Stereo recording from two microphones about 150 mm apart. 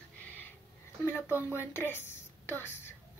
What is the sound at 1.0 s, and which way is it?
A woman's voice, 15° left (ahead or behind).